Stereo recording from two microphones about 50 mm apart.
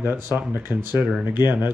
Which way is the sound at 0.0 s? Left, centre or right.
Right.